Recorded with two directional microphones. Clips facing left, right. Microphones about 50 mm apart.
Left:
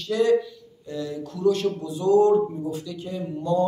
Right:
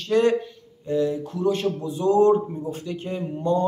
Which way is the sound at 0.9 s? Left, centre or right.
Right.